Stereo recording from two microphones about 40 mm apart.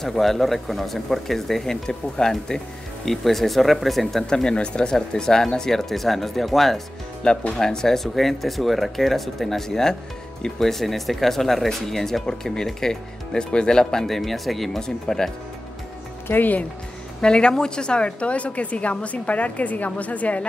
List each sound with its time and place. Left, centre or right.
0.0 s speech: centre
4.3 s speech: centre
7.5 s speech: centre
14.0 s speech: centre
14.8 s speech: centre
16.3 s speech: left
17.2 s a woman's voice: left